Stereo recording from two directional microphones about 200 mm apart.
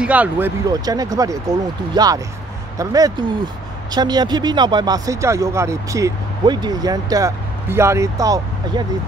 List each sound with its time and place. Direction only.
0.0 s speech: 5° right (ahead or behind)
0.7 s speech: 20° right (ahead or behind)